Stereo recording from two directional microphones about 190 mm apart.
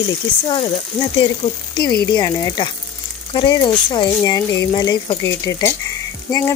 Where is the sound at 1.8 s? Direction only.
55° left (ahead or behind).